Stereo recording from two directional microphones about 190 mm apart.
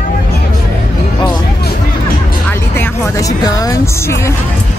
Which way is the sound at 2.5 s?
10° left (ahead or behind).